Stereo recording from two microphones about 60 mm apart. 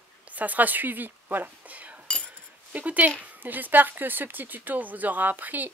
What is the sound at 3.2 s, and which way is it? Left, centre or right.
Speech, right.